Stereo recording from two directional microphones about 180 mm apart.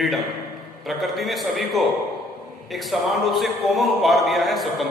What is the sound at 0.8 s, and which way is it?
A man's voice, centre (ahead or behind).